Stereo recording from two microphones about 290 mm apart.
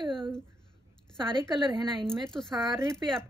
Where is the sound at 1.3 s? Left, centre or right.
Centre.